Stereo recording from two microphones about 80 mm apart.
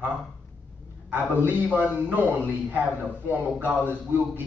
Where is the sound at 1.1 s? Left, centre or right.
Right.